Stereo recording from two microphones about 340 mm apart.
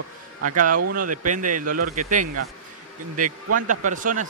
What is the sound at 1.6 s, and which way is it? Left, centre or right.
Speech, right.